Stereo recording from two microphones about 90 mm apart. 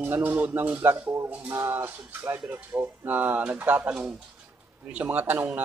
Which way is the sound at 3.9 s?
10° right (ahead or behind).